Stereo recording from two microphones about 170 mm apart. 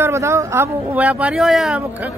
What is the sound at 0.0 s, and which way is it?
A man's voice, 15° right (ahead or behind).